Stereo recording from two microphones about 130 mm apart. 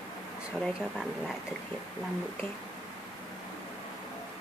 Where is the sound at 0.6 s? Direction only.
5° right (ahead or behind).